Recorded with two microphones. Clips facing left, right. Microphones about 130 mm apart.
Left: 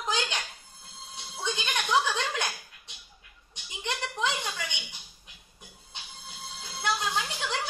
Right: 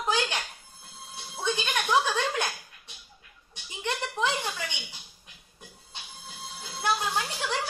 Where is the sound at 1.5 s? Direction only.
15° right (ahead or behind).